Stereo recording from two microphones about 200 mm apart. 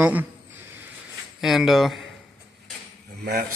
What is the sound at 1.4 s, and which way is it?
Speech, centre (ahead or behind).